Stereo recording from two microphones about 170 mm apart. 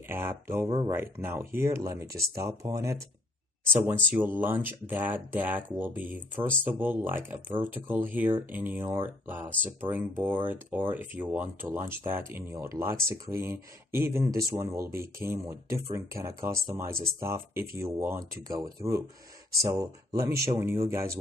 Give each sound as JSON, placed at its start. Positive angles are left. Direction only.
{"t": 0.1, "sound": "speech", "side_deg": -15}
{"t": 0.7, "sound": "speech", "side_deg": -25}
{"t": 0.9, "sound": "speech", "side_deg": -15}